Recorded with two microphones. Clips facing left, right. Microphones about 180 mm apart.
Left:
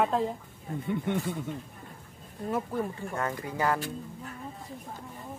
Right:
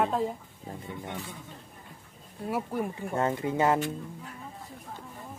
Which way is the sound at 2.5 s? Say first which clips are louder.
Even; 15° right (ahead or behind).